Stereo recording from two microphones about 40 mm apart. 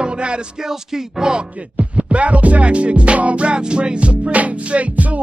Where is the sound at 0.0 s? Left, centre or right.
Right.